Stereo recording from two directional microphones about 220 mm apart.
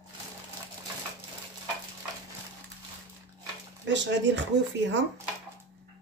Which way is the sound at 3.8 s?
55° right (ahead or behind).